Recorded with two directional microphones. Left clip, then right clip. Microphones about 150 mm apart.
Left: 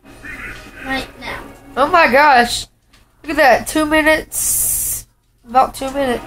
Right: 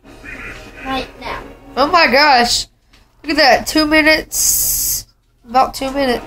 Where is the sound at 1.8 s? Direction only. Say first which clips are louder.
Even; 25° right (ahead or behind).